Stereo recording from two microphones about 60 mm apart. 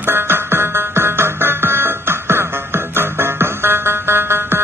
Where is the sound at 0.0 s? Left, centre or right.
Right.